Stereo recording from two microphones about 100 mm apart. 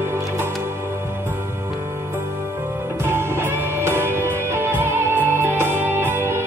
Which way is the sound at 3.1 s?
25° right (ahead or behind).